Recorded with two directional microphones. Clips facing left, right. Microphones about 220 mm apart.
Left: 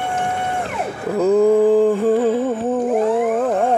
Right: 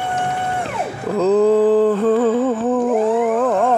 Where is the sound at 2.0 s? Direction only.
15° left (ahead or behind).